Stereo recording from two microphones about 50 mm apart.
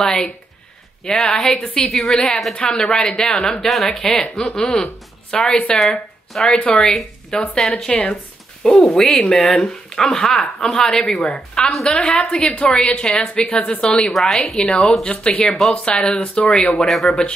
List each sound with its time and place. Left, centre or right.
0.0 s speech: centre
2.5 s a woman's voice: centre
2.9 s speech: centre
5.8 s speech: centre
6.4 s speech: centre
7.9 s a woman's voice: left
14.3 s speech: centre
15.0 s a woman's voice: left
15.4 s speech: centre
15.7 s a woman's voice: left
16.5 s speech: centre